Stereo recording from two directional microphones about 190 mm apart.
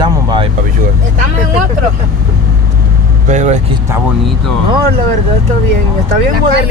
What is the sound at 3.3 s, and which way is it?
Speech, 40° right (ahead or behind).